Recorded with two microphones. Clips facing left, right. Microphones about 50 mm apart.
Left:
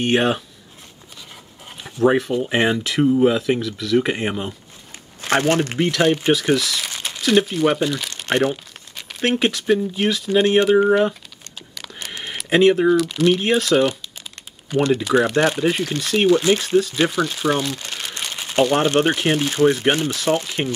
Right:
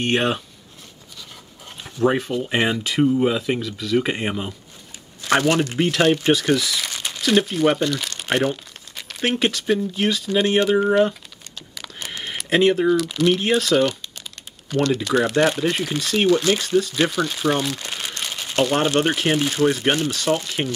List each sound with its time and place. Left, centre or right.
0.0 s speech: centre
1.8 s speech: centre
5.2 s speech: left
6.0 s speech: centre
8.2 s crumpling: centre
8.5 s speech: centre
18.2 s crumpling: centre
18.6 s speech: centre